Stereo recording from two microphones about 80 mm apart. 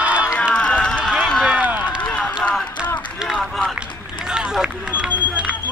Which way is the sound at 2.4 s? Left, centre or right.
Centre.